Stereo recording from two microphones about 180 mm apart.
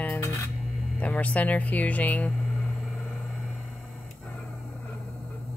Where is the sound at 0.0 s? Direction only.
10° left (ahead or behind).